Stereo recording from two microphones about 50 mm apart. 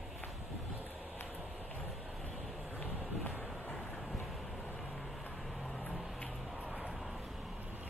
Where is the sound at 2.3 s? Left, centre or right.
Centre.